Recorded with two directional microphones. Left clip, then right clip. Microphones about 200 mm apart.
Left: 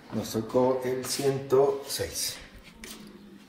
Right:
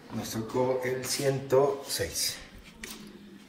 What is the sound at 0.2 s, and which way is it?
Speech, 20° left (ahead or behind).